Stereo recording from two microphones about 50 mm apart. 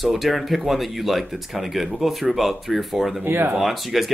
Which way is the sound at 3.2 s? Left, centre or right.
Right.